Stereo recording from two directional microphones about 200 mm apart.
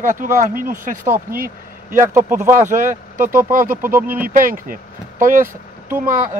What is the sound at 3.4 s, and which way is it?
Speech, 40° right (ahead or behind).